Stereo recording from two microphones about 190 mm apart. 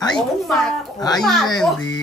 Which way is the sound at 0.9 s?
20° left (ahead or behind).